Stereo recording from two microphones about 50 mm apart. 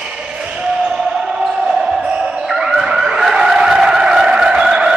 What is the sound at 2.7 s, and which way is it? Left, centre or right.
Vehicle, centre.